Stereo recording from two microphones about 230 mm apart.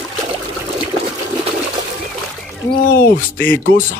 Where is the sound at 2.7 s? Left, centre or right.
Left.